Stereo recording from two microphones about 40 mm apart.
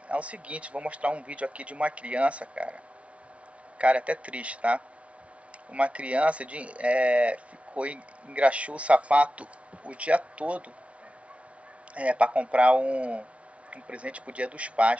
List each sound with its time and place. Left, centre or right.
0.1 s speech: right
11.9 s speech: right